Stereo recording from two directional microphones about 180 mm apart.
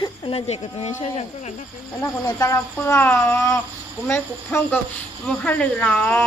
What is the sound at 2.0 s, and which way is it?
Speech, 20° left (ahead or behind).